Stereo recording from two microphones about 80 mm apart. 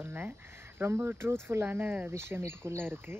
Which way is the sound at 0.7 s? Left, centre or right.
Right.